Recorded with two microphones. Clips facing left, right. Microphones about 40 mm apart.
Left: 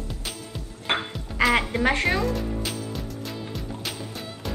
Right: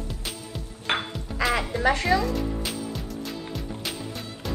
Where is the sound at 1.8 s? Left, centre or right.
Left.